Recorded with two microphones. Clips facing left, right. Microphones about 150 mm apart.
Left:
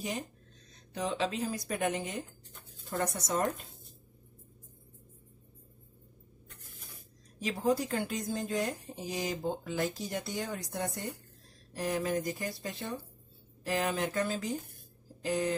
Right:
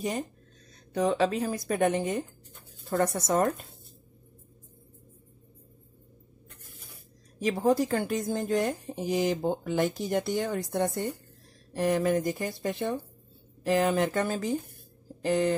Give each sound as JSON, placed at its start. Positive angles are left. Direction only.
{"t": 0.9, "sound": "speech", "side_deg": -60}
{"t": 7.4, "sound": "speech", "side_deg": -65}